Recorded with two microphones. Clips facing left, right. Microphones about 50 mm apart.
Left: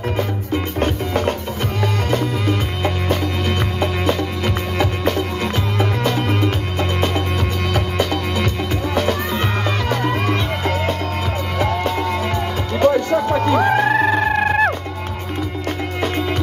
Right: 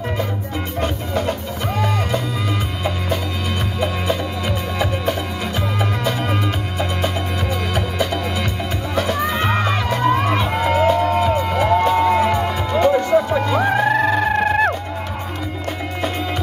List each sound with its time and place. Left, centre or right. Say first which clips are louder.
0.7 s music: even; left
9.3 s music: right 2 dB; centre
13.6 s music: even; centre